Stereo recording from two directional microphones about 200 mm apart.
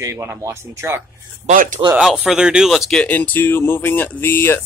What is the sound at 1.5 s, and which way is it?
Speech, 40° right (ahead or behind).